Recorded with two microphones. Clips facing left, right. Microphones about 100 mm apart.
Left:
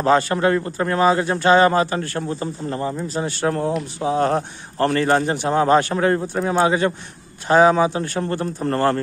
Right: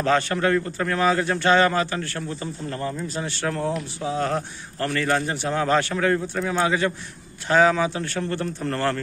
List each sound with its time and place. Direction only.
0.0 s speech: 25° left (ahead or behind)
4.0 s speech: 40° left (ahead or behind)